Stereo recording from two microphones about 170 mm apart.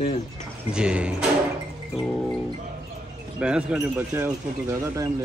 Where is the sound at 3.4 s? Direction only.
5° right (ahead or behind).